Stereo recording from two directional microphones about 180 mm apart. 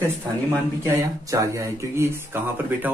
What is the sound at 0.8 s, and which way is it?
Speech, 15° right (ahead or behind).